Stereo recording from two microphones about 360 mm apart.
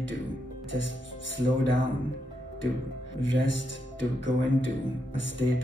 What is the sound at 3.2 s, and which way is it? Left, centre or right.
Speech, left.